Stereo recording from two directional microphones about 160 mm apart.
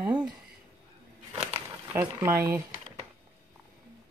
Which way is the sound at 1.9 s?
20° right (ahead or behind).